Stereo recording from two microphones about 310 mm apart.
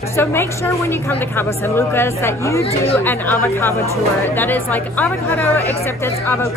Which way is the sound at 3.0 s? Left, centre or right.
Centre.